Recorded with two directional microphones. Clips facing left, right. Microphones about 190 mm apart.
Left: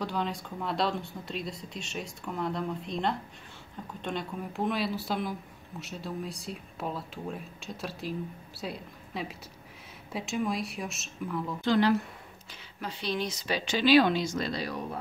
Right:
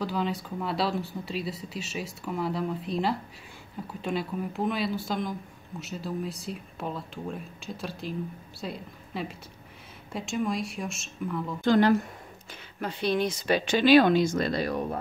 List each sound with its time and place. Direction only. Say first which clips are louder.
0.0 s speech: right 3 dB; centre (ahead or behind)
11.6 s speech: right 4 dB; 45° right (ahead or behind)